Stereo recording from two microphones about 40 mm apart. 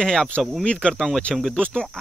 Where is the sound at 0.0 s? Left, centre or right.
Centre.